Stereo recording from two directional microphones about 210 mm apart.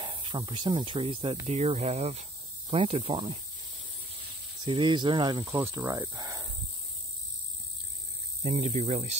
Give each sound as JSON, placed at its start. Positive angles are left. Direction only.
{"t": 0.0, "sound": "speech", "side_deg": -25}
{"t": 4.6, "sound": "speech", "side_deg": -25}
{"t": 8.4, "sound": "mains hum", "side_deg": -30}